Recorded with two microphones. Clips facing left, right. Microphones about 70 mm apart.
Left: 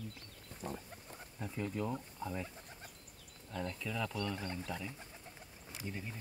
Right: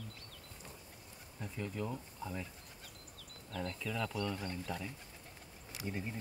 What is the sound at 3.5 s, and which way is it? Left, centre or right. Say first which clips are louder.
Speech: even; centre.